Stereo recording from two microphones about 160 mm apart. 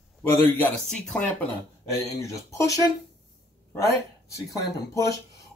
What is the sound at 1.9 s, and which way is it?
Speech, 20° left (ahead or behind).